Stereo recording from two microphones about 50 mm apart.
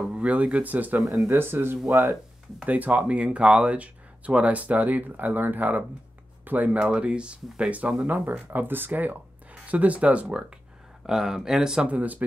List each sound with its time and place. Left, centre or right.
0.1 s speech: right
1.3 s speech: right
2.6 s speech: right
8.1 s speech: right
11.1 s speech: centre
11.9 s speech: right